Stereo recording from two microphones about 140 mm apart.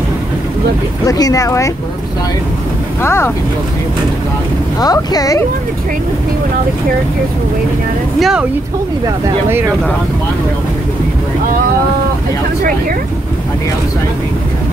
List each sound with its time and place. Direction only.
1.0 s speech: 25° left (ahead or behind)
3.0 s speech: 20° left (ahead or behind)
4.7 s speech: 25° left (ahead or behind)
8.2 s speech: 5° right (ahead or behind)